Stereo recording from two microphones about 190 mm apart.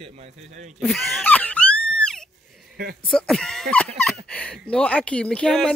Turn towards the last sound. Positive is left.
turn(degrees=5)  # may be behind; listen again after turning